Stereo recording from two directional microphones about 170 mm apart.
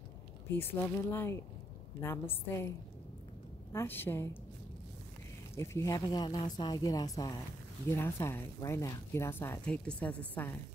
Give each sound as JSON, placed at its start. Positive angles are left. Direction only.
{"t": 0.5, "sound": "speech", "side_deg": 10}
{"t": 3.7, "sound": "speech", "side_deg": 10}
{"t": 5.6, "sound": "speech", "side_deg": 15}